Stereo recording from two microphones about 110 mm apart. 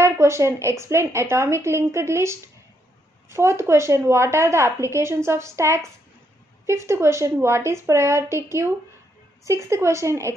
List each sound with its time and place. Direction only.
0.0 s a woman's voice: 25° right (ahead or behind)